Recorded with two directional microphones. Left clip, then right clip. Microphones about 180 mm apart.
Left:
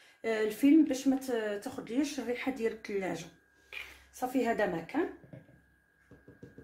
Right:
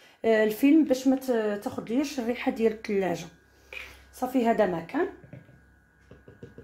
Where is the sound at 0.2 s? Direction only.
50° right (ahead or behind).